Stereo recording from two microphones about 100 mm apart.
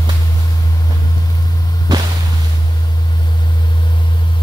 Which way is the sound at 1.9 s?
40° right (ahead or behind).